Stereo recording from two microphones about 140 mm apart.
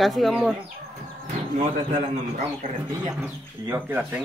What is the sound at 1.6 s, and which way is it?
Speech, 60° right (ahead or behind).